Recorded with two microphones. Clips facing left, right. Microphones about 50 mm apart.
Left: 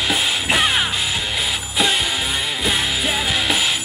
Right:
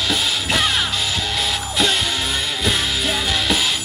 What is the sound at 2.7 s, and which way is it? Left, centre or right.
Music, centre.